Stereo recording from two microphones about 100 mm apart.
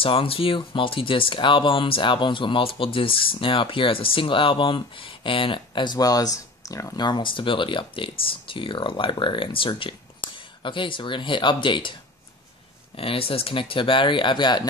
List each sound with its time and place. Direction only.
0.0 s speech: 65° left (ahead or behind); by 7.1 s 35° left (ahead or behind)
7.1 s speech: 55° left (ahead or behind)
12.9 s speech: 70° left (ahead or behind); by 14.7 s 50° left (ahead or behind)